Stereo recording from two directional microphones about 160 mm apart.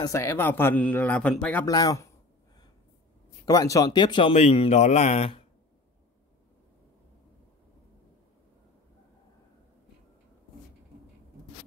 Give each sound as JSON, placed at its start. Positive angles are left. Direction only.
{"t": 0.0, "sound": "a man's voice", "side_deg": 15}
{"t": 1.7, "sound": "a man's voice", "side_deg": 25}
{"t": 3.4, "sound": "speech", "side_deg": 20}